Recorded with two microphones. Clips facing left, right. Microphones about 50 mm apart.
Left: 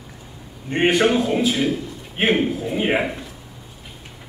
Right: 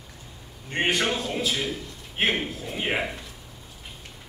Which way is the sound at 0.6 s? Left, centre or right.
Centre.